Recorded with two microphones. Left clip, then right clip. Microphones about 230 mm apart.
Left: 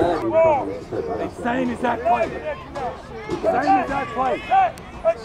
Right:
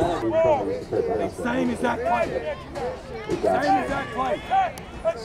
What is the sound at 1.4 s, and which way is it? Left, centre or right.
Speech, right.